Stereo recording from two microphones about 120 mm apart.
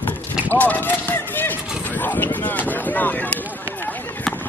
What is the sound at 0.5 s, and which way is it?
Speech, 15° left (ahead or behind).